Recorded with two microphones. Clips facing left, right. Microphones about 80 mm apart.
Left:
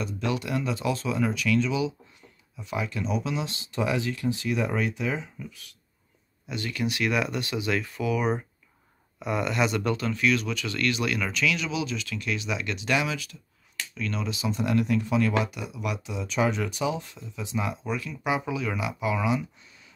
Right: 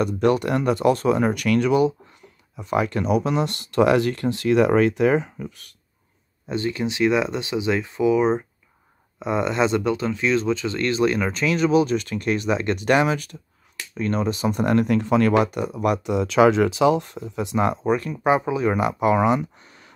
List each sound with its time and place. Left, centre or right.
0.0 s speech: right
6.4 s speech: right
15.0 s speech: right
18.1 s speech: right